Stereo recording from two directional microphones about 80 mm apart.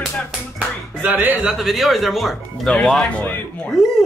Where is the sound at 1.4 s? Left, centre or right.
Centre.